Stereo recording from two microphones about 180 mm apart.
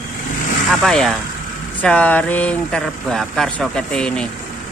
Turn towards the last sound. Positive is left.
turn(degrees=5)  # may be behind; listen again after turning